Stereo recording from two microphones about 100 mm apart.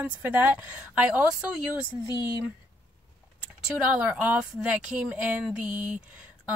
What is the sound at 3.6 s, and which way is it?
Speech, 10° right (ahead or behind).